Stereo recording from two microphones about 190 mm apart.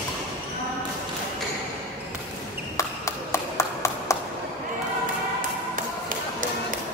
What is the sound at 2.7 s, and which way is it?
Ping, 15° left (ahead or behind).